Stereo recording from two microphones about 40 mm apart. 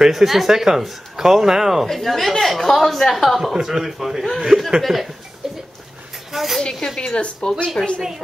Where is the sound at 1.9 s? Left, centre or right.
Centre.